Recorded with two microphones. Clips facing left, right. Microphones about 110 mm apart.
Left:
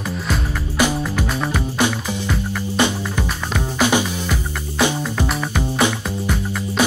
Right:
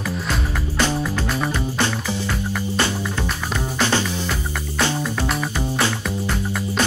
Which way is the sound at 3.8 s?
15° left (ahead or behind).